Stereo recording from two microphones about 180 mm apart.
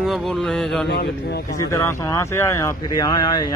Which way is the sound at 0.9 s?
60° left (ahead or behind).